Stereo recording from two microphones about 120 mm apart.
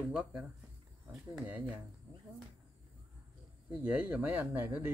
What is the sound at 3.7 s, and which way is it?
Speech, 10° right (ahead or behind).